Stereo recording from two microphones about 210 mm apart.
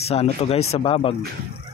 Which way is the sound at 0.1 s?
30° left (ahead or behind).